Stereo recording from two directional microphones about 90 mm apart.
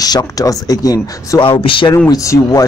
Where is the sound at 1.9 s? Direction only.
35° left (ahead or behind).